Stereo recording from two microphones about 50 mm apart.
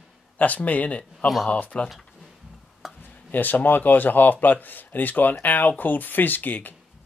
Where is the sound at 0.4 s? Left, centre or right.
Left.